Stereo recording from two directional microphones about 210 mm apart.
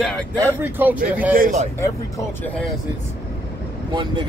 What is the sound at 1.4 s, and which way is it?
Speech, 35° right (ahead or behind).